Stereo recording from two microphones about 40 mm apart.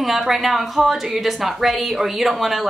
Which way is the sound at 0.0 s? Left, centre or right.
Centre.